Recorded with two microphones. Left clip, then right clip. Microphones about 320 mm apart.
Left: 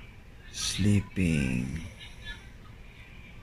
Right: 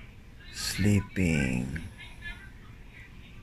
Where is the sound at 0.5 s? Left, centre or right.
Right.